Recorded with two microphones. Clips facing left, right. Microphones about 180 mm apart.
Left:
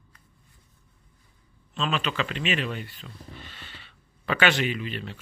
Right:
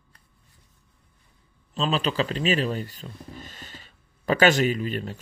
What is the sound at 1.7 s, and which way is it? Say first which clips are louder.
Speech: right 3 dB; 35° right (ahead or behind).